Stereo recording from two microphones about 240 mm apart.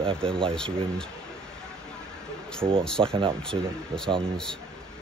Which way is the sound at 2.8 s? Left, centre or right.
Centre.